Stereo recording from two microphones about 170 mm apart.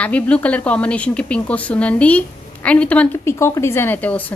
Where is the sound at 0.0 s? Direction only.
10° left (ahead or behind).